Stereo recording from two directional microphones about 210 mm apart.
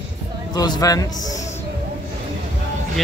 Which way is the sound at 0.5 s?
20° left (ahead or behind).